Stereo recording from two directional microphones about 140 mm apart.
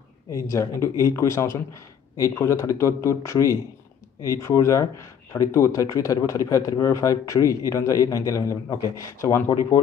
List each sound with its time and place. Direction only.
0.3 s speech: 20° left (ahead or behind)